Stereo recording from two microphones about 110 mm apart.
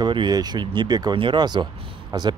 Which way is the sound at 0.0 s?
45° right (ahead or behind).